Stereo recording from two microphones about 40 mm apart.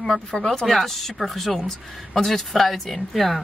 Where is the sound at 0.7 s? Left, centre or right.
Centre.